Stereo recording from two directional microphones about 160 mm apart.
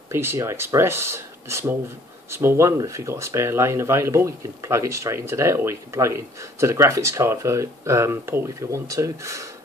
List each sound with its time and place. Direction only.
0.1 s speech: 15° right (ahead or behind)